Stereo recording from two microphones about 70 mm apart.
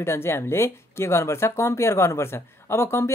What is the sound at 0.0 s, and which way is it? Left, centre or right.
Speech, left.